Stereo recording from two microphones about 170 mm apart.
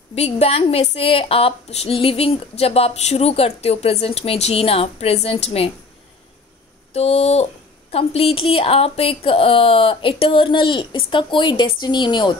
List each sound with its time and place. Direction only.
0.1 s a woman's voice: 35° left (ahead or behind)
6.9 s a woman's voice: 40° left (ahead or behind)